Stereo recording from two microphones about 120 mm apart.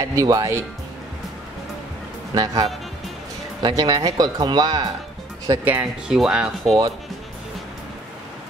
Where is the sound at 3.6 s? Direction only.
35° right (ahead or behind).